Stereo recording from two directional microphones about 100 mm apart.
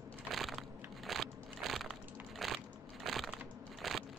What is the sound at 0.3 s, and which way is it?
Crushing, centre (ahead or behind).